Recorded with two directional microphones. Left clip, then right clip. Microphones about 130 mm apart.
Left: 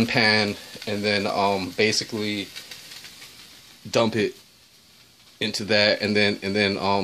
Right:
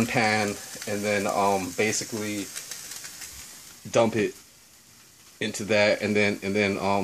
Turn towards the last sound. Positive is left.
turn(degrees=30)  # may be behind; listen again after turning